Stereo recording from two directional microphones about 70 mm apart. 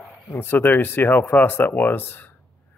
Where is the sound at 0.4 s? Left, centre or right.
Left.